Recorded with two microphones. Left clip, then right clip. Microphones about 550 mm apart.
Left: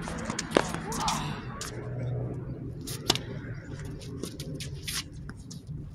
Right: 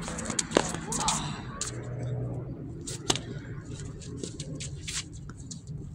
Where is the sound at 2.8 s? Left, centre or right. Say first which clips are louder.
Left 2 dB; left.